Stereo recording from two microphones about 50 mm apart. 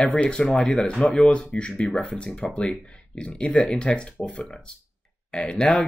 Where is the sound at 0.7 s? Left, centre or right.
Left.